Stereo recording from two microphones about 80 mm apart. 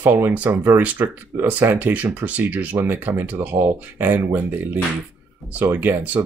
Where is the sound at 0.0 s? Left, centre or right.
Right.